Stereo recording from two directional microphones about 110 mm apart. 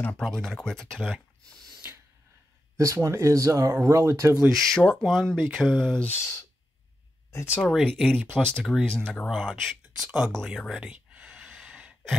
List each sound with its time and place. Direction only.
0.0 s speech: 5° left (ahead or behind)
2.8 s speech: 30° right (ahead or behind)
4.5 s speech: 5° left (ahead or behind)
6.0 s speech: 25° left (ahead or behind)
7.6 s speech: 5° left (ahead or behind)
10.9 s gasp: 10° right (ahead or behind)